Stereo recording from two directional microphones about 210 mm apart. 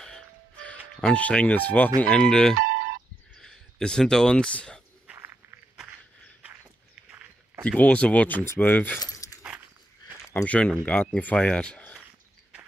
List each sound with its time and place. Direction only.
0.0 s music: 5° left (ahead or behind)
1.0 s speech: 5° left (ahead or behind)
3.3 s a sound: 5° left (ahead or behind)
5.1 s walk: 10° right (ahead or behind)
7.6 s speech: 5° left (ahead or behind)
9.0 s keys jangling: 15° left (ahead or behind)
10.3 s speech: 5° left (ahead or behind)